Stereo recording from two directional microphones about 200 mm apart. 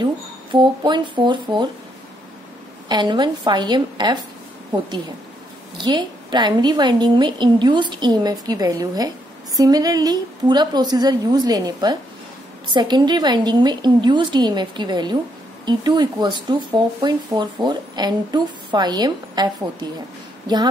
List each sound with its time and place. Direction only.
0.0 s speech: 20° right (ahead or behind)
2.9 s speech: 20° right (ahead or behind)
5.8 s speech: 20° right (ahead or behind)